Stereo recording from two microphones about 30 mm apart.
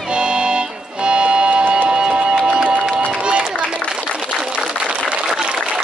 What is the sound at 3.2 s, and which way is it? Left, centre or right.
Run, right.